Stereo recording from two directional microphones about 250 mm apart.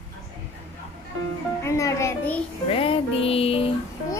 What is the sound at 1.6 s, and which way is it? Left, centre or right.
Speech, centre.